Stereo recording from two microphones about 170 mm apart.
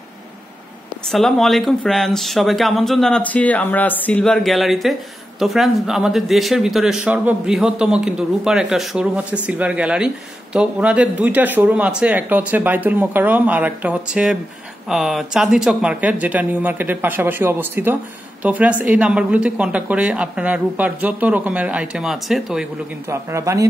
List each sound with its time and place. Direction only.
1.0 s speech: centre (ahead or behind)
23.0 s speech: 15° right (ahead or behind)